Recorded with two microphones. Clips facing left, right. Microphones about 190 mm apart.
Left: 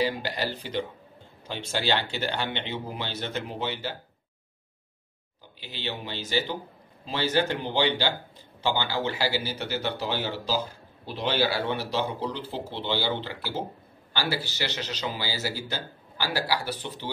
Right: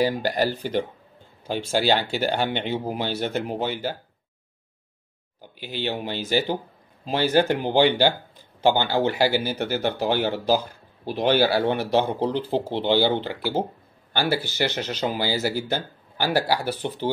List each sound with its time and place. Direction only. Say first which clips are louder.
0.0 s speech: right 6 dB; 45° right (ahead or behind)
6.2 s speech: right 5 dB; 50° right (ahead or behind)
11.1 s speech: right 6 dB; 45° right (ahead or behind)